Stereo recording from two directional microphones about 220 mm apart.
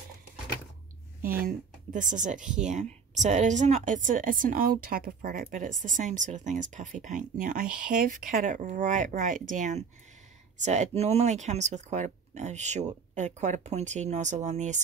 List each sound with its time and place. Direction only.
1.4 s speech: 35° right (ahead or behind)